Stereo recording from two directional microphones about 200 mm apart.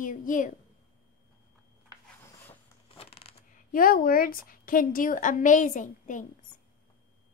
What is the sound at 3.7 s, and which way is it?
A woman's voice, 45° left (ahead or behind).